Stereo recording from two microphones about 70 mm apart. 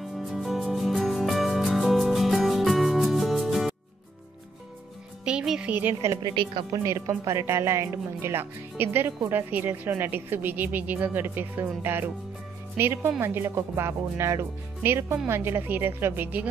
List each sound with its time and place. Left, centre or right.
0.0 s music: centre
5.2 s music: centre
5.7 s a woman's voice: right
6.8 s speech: right